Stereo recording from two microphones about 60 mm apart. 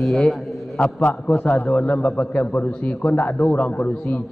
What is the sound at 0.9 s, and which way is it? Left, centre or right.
A man's voice, left.